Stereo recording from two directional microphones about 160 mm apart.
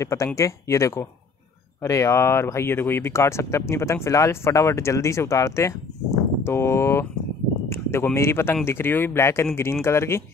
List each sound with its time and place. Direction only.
0.0 s speech: 20° left (ahead or behind)